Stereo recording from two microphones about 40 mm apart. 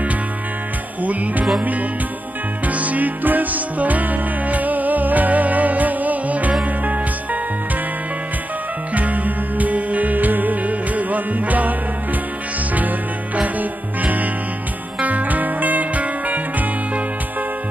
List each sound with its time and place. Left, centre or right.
1.0 s music: right
8.9 s music: right
13.4 s music: right